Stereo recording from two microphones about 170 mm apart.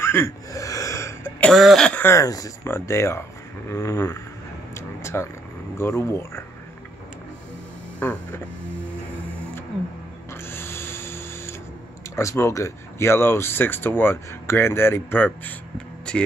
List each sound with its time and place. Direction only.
0.0 s cough: 15° left (ahead or behind)
1.5 s speech: centre (ahead or behind); by 4.2 s 15° left (ahead or behind)
4.7 s a sound: 15° left (ahead or behind)
5.8 s speech: 15° left (ahead or behind)
8.0 s speech: 10° left (ahead or behind)
10.3 s printer: 15° left (ahead or behind)
12.2 s speech: 15° left (ahead or behind)